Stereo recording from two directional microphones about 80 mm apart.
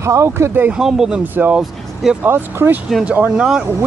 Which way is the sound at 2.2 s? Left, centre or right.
Right.